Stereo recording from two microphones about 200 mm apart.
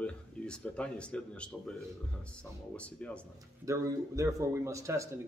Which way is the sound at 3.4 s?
15° right (ahead or behind).